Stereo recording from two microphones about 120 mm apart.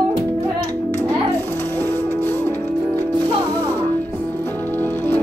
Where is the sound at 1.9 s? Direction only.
20° left (ahead or behind).